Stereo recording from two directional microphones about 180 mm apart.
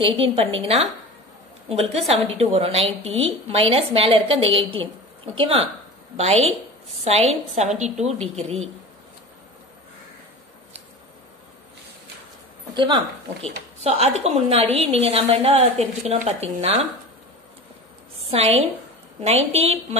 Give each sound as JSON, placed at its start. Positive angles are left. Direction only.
{"t": 0.0, "sound": "a woman's voice", "side_deg": -30}
{"t": 7.1, "sound": "a woman's voice", "side_deg": -35}
{"t": 12.7, "sound": "speech", "side_deg": -25}
{"t": 13.8, "sound": "a woman's voice", "side_deg": -35}
{"t": 18.3, "sound": "a woman's voice", "side_deg": -35}